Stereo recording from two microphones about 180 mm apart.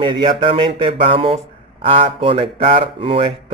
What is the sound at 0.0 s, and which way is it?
Speech, 30° right (ahead or behind).